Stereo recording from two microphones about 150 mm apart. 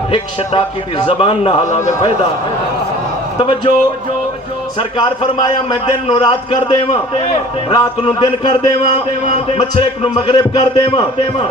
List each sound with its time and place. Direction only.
0.1 s a man's voice: 35° left (ahead or behind); by 2.1 s 50° left (ahead or behind)
3.3 s a man's voice: 35° left (ahead or behind)
4.7 s a man's voice: 35° left (ahead or behind)